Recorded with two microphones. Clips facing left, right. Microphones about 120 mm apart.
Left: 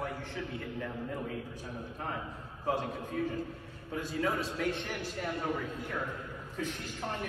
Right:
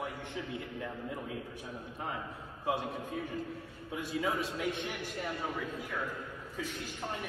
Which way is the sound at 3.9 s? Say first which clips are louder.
Left 1 dB; 10° right (ahead or behind).